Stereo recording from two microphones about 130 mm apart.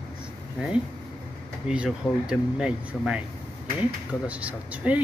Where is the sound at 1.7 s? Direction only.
5° right (ahead or behind).